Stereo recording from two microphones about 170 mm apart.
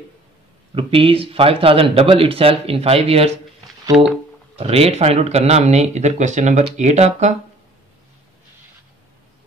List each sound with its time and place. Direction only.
0.7 s speech: 30° right (ahead or behind)
4.6 s speech: 35° right (ahead or behind)